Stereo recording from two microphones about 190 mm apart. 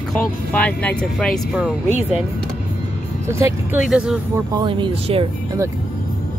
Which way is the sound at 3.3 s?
15° right (ahead or behind).